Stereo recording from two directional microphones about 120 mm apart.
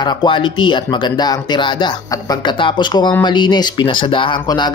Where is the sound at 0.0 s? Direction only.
40° left (ahead or behind).